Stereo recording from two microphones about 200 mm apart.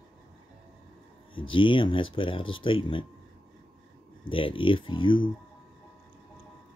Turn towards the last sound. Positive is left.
turn(degrees=25)  # may be behind; listen again after turning